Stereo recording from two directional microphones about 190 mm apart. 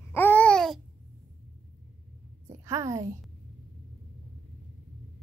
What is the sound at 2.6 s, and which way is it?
Speech, 15° right (ahead or behind).